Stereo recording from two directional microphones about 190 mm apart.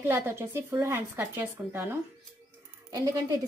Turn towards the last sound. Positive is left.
turn(degrees=-15)  # may be behind; listen again after turning